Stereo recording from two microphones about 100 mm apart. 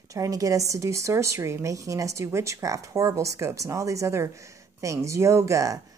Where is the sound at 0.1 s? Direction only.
35° right (ahead or behind).